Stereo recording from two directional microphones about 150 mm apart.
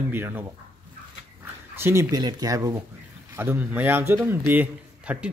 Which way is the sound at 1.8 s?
15° right (ahead or behind).